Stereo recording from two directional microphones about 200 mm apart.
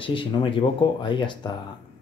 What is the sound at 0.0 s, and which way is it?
Speech, 25° left (ahead or behind).